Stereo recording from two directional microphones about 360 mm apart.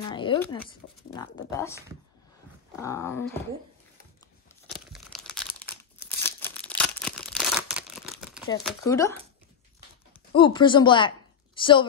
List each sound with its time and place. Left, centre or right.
0.1 s speech: centre
4.7 s crumpling: centre
6.2 s a sound: centre
8.6 s speech: centre
10.3 s a woman's voice: centre